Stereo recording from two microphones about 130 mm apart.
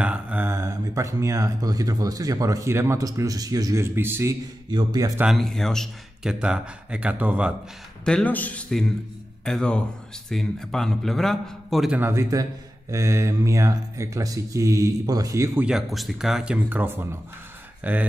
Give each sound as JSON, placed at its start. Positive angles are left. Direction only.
{"t": 0.0, "sound": "speech", "side_deg": -10}
{"t": 4.6, "sound": "a man's voice", "side_deg": -35}
{"t": 5.2, "sound": "a man's voice", "side_deg": 0}
{"t": 6.4, "sound": "speech", "side_deg": -5}
{"t": 8.0, "sound": "a man's voice", "side_deg": 10}
{"t": 12.0, "sound": "speech", "side_deg": -20}
{"t": 15.5, "sound": "speech", "side_deg": -5}